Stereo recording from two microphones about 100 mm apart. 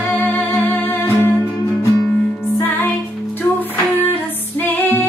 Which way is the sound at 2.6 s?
20° left (ahead or behind).